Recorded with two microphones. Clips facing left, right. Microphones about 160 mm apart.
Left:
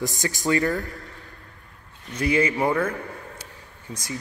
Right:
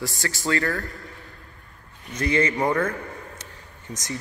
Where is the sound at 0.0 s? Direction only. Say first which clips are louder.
Left 2 dB; 20° left (ahead or behind).